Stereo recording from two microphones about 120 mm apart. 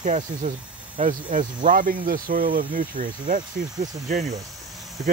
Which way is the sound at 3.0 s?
80° right.